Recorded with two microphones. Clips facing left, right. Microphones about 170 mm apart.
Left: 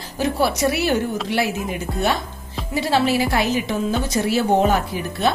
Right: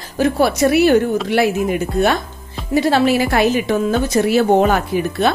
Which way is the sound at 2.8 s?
55° right (ahead or behind).